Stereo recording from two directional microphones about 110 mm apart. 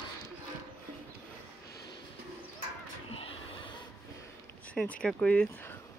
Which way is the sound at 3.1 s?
60° left (ahead or behind).